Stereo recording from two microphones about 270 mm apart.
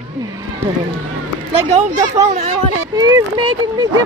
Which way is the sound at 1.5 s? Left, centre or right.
Right.